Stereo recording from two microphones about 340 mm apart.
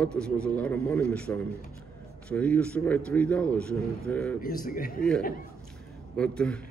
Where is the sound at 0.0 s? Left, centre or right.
Centre.